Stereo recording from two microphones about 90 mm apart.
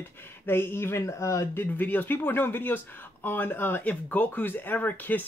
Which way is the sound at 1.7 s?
20° left (ahead or behind).